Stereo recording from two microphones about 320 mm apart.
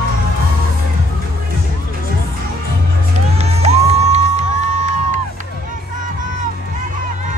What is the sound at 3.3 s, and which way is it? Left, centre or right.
Music, centre.